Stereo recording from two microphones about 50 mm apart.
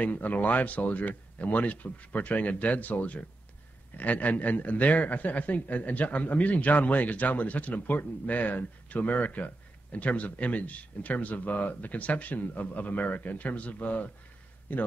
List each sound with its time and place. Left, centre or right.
0.0 s a man's voice: left